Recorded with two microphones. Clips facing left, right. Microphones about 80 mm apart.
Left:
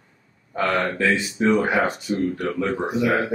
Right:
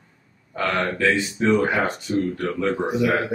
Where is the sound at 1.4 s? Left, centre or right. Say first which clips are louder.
Left 1 dB; centre.